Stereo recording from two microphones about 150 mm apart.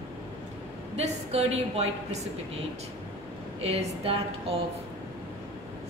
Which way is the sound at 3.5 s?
45° right (ahead or behind).